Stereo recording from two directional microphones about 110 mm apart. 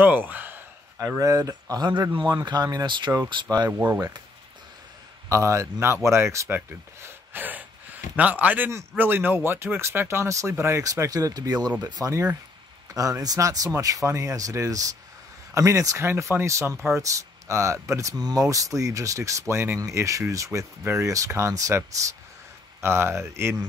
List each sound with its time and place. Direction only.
0.0 s gasp: 15° right (ahead or behind)
1.0 s speech: 30° right (ahead or behind)
3.7 s speech: 15° right (ahead or behind)
5.3 s speech: 30° right (ahead or behind)